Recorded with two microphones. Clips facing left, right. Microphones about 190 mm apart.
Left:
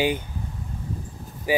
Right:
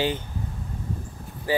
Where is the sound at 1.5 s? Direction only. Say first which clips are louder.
Left 2 dB; 15° left (ahead or behind).